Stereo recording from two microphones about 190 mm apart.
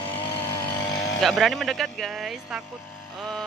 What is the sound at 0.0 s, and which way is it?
Vehicle, 30° left (ahead or behind).